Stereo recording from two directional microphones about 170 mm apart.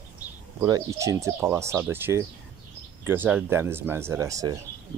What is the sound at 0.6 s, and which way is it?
Speech, 20° right (ahead or behind).